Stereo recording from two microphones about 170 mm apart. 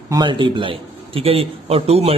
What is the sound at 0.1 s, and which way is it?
A man's voice, 25° right (ahead or behind).